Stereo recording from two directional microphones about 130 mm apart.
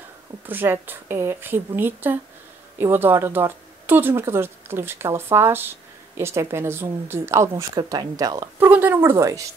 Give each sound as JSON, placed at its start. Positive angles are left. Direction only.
{"t": 0.5, "sound": "speech", "side_deg": -15}
{"t": 8.5, "sound": "speech", "side_deg": -15}